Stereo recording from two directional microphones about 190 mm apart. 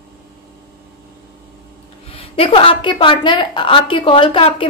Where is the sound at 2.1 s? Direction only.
30° left (ahead or behind).